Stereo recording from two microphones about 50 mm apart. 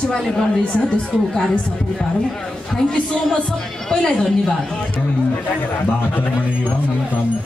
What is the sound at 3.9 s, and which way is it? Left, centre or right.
Speech, centre.